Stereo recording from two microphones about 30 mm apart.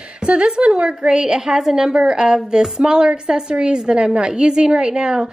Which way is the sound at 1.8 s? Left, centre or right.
Right.